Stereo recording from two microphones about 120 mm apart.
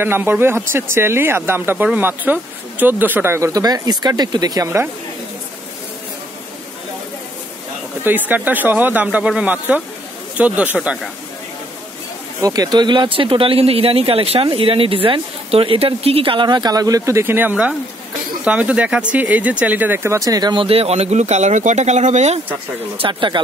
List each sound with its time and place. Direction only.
0.0 s speech: 15° right (ahead or behind)
8.0 s speech: 15° right (ahead or behind)
12.4 s speech: 30° right (ahead or behind)
20.6 s speech: 55° right (ahead or behind); by 22.4 s 70° right (ahead or behind)
22.9 s speech: 40° right (ahead or behind)